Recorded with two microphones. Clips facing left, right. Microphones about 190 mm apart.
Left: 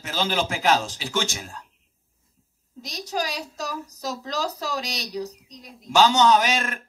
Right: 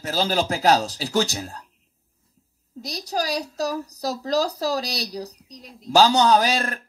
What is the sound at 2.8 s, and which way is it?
Speech, 35° right (ahead or behind).